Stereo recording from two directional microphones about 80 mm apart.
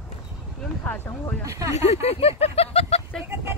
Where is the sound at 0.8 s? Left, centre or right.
Left.